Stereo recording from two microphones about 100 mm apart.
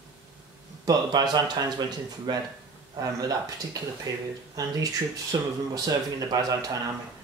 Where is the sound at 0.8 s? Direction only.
40° right (ahead or behind).